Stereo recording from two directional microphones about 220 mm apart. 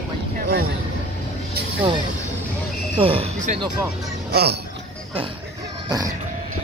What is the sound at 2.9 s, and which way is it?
Speech, 25° right (ahead or behind).